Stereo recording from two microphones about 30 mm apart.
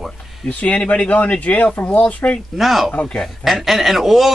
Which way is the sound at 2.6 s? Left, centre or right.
Centre.